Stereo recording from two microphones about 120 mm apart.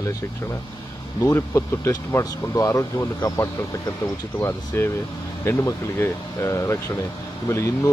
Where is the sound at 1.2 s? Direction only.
25° left (ahead or behind).